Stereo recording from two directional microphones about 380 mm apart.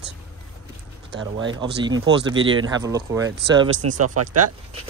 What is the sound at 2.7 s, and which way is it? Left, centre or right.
Speech, centre.